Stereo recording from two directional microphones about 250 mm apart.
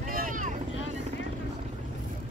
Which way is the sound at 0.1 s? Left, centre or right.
Right.